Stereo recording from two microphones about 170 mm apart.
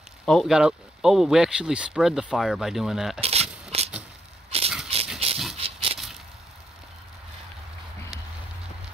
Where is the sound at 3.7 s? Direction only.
35° right (ahead or behind).